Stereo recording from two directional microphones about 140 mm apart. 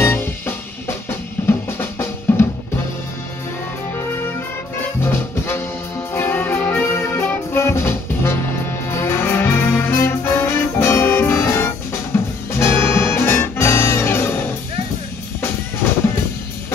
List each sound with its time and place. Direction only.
0.0 s music: 15° left (ahead or behind)
1.5 s drum: 15° left (ahead or behind)
5.0 s brass instrument: 15° left (ahead or behind)
6.1 s music: 15° left (ahead or behind)